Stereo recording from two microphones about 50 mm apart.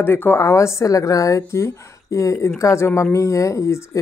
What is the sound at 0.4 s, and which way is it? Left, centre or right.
A woman's voice, left.